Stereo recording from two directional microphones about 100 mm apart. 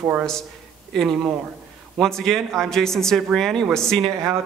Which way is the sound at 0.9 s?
5° left (ahead or behind).